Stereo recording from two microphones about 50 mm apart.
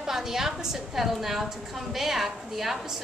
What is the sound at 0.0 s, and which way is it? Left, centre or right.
A woman's voice, centre.